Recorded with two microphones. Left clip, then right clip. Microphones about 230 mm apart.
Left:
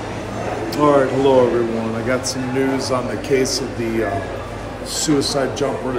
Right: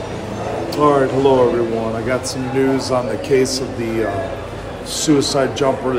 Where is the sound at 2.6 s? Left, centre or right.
Centre.